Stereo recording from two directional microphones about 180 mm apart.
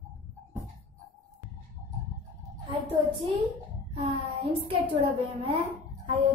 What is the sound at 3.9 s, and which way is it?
A woman's voice, 30° right (ahead or behind).